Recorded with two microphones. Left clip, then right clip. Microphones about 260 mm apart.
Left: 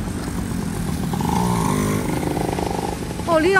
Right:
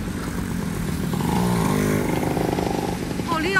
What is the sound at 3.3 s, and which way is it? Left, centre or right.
Vehicle, centre.